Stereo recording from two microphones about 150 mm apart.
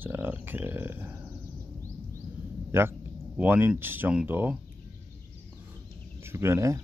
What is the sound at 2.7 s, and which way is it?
Speech, 15° right (ahead or behind).